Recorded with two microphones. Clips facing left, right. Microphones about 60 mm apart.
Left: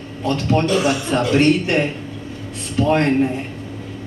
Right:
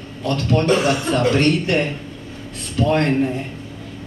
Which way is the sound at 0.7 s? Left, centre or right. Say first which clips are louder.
Right 3 dB; right.